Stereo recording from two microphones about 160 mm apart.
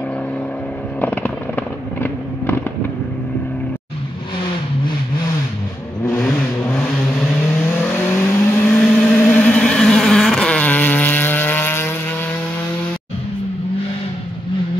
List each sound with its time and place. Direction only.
1.0 s vehicle: 10° left (ahead or behind)
6.0 s vehicle: 5° left (ahead or behind)
8.6 s vehicle: 5° left (ahead or behind)